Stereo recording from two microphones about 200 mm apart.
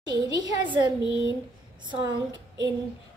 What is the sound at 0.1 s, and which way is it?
Speech, 20° right (ahead or behind).